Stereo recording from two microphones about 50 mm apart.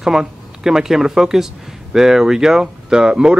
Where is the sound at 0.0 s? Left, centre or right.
Centre.